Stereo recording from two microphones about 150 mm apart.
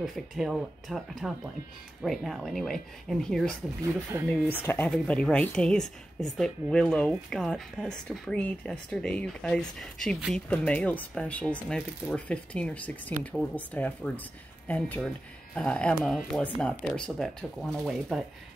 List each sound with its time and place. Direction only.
0.0 s speech: centre (ahead or behind)
3.8 s speech: 15° right (ahead or behind)
4.6 s speech: 10° left (ahead or behind)